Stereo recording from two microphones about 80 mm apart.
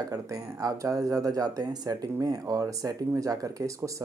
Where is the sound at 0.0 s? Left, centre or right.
Right.